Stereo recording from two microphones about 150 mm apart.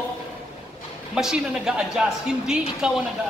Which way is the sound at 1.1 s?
5° right (ahead or behind).